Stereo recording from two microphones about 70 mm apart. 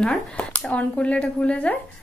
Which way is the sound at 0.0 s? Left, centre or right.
Centre.